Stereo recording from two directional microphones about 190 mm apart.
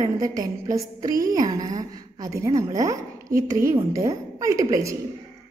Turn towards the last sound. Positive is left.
turn(degrees=-15)  # may be behind; listen again after turning